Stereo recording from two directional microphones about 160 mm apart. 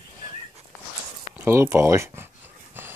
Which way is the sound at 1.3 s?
15° right (ahead or behind).